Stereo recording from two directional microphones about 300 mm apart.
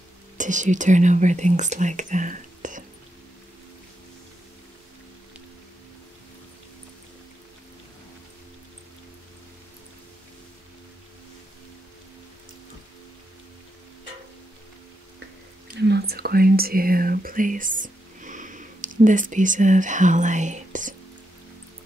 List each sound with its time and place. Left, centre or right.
0.4 s speech: right
15.9 s speech: right